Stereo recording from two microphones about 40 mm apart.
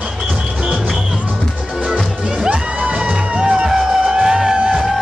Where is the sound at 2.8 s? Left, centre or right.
Right.